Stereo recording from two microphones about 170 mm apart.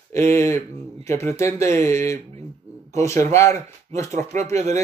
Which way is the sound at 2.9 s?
15° left (ahead or behind).